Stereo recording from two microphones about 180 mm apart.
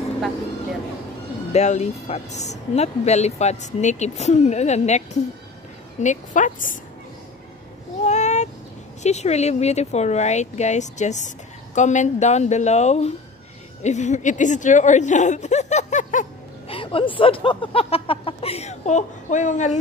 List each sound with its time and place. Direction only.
1.5 s a woman's voice: 40° left (ahead or behind)
8.0 s a sound: 40° left (ahead or behind)
9.0 s speech: 40° left (ahead or behind)
16.6 s speech: 30° left (ahead or behind)